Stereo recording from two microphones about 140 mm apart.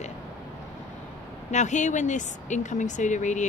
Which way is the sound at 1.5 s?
60° left (ahead or behind).